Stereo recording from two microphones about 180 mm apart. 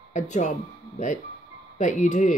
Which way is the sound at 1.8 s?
45° left (ahead or behind).